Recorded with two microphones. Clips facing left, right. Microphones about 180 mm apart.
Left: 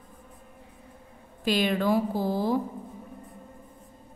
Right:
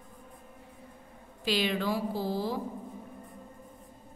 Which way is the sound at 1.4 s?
50° left (ahead or behind).